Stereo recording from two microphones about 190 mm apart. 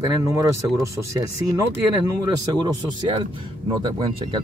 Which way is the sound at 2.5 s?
25° right (ahead or behind).